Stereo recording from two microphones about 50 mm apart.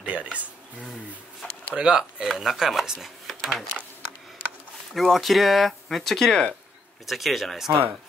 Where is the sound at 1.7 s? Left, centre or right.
Centre.